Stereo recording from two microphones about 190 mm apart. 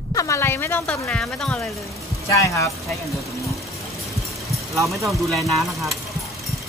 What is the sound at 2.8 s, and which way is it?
Speech, centre (ahead or behind).